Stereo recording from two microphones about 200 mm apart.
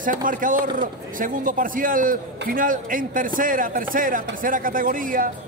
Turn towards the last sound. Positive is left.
turn(degrees=-45)  # may be behind; listen again after turning